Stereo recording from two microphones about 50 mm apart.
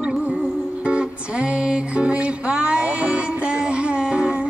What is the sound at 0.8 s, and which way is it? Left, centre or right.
Music, right.